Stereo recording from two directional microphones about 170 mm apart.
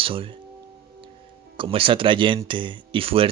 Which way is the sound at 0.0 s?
30° right (ahead or behind).